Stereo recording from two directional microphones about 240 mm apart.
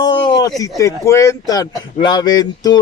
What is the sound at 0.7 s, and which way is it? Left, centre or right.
Speech, centre.